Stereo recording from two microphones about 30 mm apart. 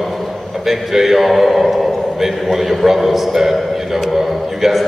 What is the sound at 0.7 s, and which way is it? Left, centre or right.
A man's voice, centre.